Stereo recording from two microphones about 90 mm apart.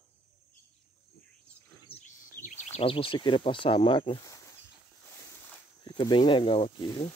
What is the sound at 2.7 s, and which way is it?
Speech, 85° left.